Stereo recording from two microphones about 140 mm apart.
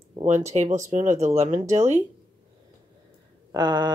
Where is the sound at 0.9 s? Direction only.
60° right (ahead or behind).